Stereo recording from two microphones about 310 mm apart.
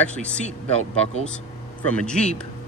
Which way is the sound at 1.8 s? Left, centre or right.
Centre.